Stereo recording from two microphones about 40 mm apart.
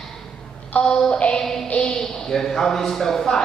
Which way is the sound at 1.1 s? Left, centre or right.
Left.